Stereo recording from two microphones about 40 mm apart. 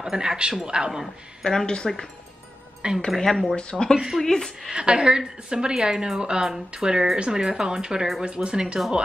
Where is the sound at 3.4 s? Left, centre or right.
Left.